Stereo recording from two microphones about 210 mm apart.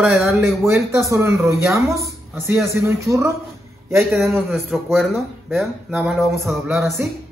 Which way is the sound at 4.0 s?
Centre (ahead or behind).